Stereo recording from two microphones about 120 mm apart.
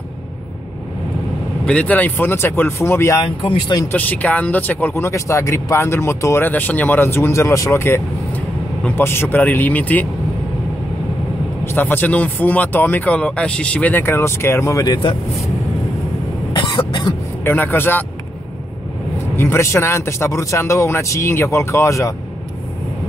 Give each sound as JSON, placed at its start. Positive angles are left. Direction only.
{"t": 1.7, "sound": "speech", "side_deg": 10}
{"t": 3.2, "sound": "speech", "side_deg": 40}
{"t": 3.9, "sound": "speech", "side_deg": 15}
{"t": 11.6, "sound": "speech", "side_deg": 15}
{"t": 16.5, "sound": "cough", "side_deg": 40}
{"t": 17.5, "sound": "speech", "side_deg": 15}
{"t": 19.3, "sound": "speech", "side_deg": 20}